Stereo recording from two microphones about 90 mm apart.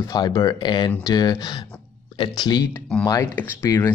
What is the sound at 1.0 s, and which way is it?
Speech, 45° left (ahead or behind).